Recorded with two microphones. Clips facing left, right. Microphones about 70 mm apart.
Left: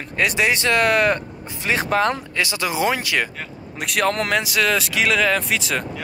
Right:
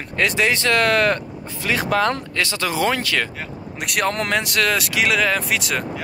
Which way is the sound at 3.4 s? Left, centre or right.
Centre.